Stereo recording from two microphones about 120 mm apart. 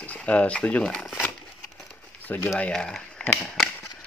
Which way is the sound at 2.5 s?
5° left (ahead or behind).